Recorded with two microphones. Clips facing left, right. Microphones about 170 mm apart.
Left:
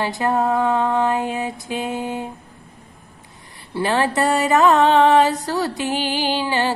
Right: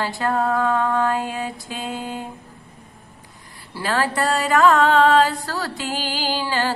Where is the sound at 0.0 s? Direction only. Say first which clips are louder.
Left 2 dB; 20° left (ahead or behind).